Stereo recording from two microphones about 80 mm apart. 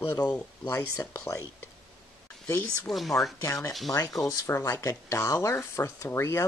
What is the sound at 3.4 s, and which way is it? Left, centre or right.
Speech, left.